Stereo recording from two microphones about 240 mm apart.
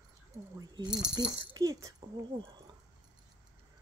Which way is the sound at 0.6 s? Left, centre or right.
Centre.